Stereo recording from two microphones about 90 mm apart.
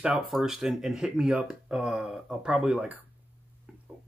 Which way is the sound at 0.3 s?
5° right (ahead or behind).